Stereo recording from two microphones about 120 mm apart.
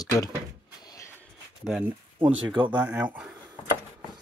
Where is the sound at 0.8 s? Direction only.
25° left (ahead or behind).